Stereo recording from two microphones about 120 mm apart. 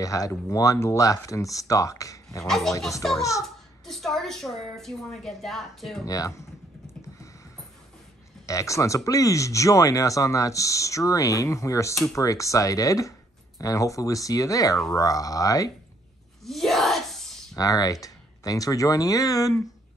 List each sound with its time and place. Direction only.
0.0 s speech: 30° left (ahead or behind)
2.4 s a woman's voice: centre (ahead or behind)
3.2 s speech: 25° left (ahead or behind)
3.4 s a woman's voice: centre (ahead or behind)
6.0 s speech: 30° left (ahead or behind)
8.5 s speech: 25° left (ahead or behind)
16.4 s wail: centre (ahead or behind)
17.6 s speech: 30° left (ahead or behind)